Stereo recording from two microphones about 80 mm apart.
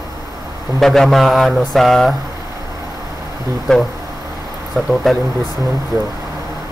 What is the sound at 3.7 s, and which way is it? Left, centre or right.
A man's voice, centre.